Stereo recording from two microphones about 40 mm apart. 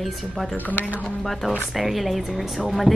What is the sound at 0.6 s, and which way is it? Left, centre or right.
Speech, left.